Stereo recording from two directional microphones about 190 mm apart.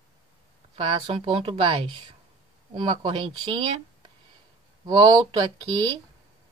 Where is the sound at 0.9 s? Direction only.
30° right (ahead or behind).